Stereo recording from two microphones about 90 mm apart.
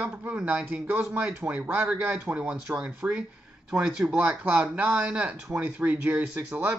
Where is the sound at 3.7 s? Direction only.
10° right (ahead or behind).